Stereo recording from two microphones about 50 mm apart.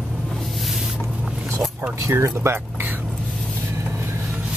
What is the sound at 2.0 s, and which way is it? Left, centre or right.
Speech, right.